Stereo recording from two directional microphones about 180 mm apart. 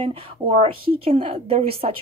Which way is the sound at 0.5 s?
30° right (ahead or behind).